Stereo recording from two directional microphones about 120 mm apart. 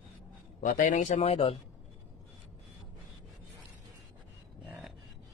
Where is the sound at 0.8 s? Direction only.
90° left.